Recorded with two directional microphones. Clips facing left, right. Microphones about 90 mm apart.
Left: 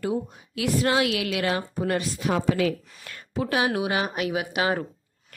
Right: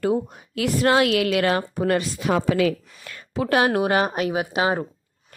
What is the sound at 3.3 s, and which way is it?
A woman's voice, 70° right (ahead or behind).